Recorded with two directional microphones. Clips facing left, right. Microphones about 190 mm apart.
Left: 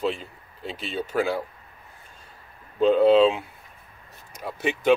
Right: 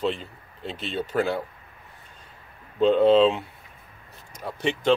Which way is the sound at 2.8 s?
5° left (ahead or behind).